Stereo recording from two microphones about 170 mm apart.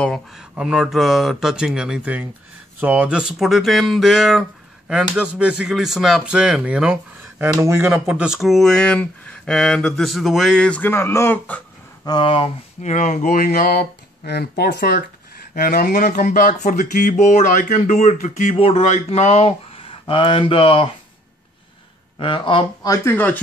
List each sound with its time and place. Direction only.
0.0 s speech: centre (ahead or behind); by 7.9 s 15° right (ahead or behind)
7.9 s speech: 5° right (ahead or behind)
12.1 s speech: 30° left (ahead or behind)
12.8 s speech: 45° left (ahead or behind)
22.2 s speech: 30° left (ahead or behind)
23.0 s speech: 10° left (ahead or behind)